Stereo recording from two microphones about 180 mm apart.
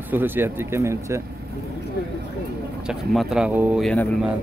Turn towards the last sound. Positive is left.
turn(degrees=10)  # may be behind; listen again after turning